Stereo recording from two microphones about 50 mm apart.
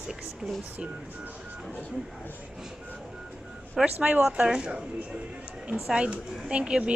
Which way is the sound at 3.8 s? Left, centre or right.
Right.